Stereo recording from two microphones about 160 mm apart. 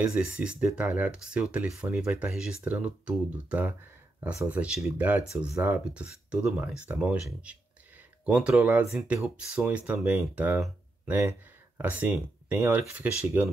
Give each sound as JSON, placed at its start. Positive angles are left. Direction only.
{"t": 0.0, "sound": "speech", "side_deg": -5}